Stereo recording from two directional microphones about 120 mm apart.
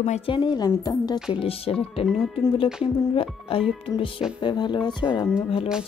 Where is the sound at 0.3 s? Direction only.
40° left (ahead or behind).